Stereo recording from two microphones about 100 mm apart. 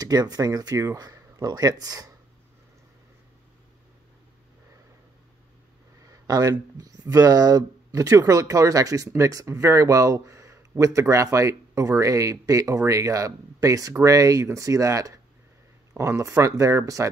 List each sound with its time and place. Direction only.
0.0 s speech: 40° right (ahead or behind)
6.0 s a sound: 40° right (ahead or behind)
6.8 s speech: 40° right (ahead or behind)